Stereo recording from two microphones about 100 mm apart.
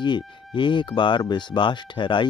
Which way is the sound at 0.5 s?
50° left (ahead or behind).